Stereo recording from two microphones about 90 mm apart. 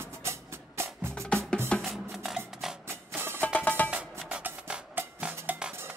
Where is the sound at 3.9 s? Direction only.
15° right (ahead or behind).